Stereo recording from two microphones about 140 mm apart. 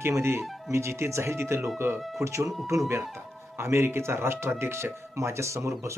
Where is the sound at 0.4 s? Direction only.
Centre (ahead or behind).